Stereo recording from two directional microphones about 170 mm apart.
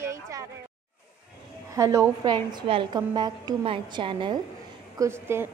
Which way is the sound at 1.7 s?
20° right (ahead or behind).